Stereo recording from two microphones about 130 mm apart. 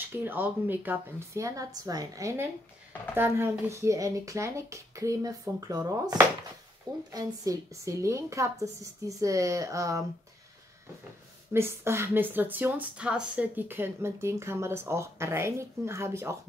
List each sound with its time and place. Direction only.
0.2 s speech: 15° right (ahead or behind)
11.5 s speech: 20° right (ahead or behind)